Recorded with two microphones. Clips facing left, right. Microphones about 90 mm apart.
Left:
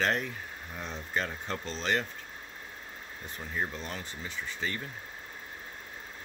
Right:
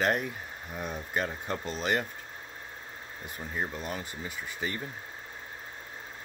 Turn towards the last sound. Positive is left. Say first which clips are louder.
# even
turn(degrees=-10)  # may be behind; listen again after turning